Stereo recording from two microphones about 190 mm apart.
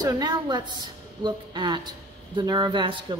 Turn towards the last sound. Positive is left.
turn(degrees=-25)  # may be behind; listen again after turning